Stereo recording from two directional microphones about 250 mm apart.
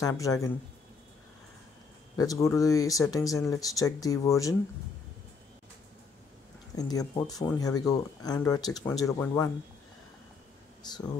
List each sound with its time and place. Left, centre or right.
0.0 s speech: centre
2.1 s speech: centre
6.8 s speech: centre
10.8 s speech: centre